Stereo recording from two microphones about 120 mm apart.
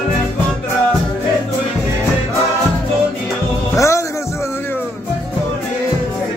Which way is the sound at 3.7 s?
25° left (ahead or behind).